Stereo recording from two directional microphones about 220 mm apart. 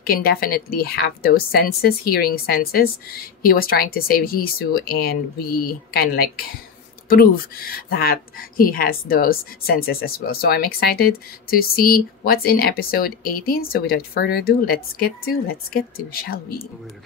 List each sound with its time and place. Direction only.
0.0 s speech: 40° left (ahead or behind)